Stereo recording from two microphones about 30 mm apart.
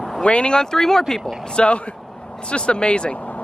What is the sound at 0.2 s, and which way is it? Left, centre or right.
Speech, left.